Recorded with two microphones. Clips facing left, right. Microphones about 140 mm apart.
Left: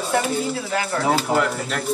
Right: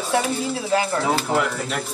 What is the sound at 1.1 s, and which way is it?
Speech, 5° right (ahead or behind).